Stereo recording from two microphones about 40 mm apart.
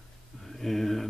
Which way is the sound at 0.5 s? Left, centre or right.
Centre.